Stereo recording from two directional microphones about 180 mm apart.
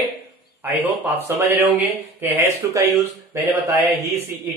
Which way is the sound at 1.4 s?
10° right (ahead or behind).